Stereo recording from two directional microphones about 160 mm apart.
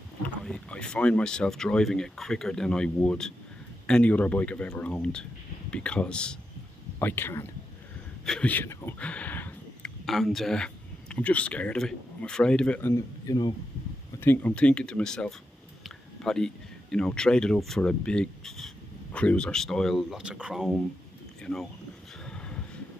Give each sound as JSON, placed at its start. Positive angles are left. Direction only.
{"t": 0.5, "sound": "speech", "side_deg": 5}
{"t": 8.3, "sound": "a sound", "side_deg": 10}
{"t": 10.0, "sound": "speech", "side_deg": 0}
{"t": 12.9, "sound": "speech", "side_deg": 25}
{"t": 14.2, "sound": "speech", "side_deg": 10}
{"t": 22.2, "sound": "a sound", "side_deg": 5}